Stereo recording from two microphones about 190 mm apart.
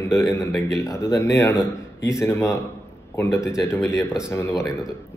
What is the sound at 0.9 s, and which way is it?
A man's voice, 15° left (ahead or behind).